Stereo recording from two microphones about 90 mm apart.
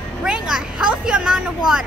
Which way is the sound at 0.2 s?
10° right (ahead or behind).